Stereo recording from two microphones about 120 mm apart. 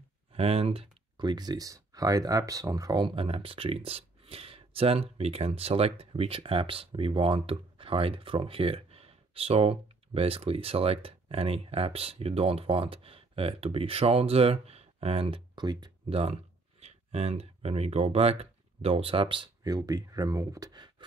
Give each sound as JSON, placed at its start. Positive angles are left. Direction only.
{"t": 0.3, "sound": "speech", "side_deg": -55}
{"t": 1.1, "sound": "speech", "side_deg": -35}
{"t": 16.1, "sound": "speech", "side_deg": -50}